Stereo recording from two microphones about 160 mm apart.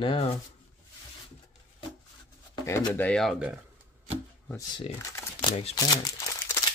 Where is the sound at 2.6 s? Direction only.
15° left (ahead or behind); by 3.6 s 5° right (ahead or behind).